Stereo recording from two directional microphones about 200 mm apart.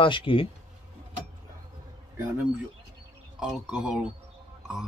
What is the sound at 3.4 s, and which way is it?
Speech, 5° right (ahead or behind).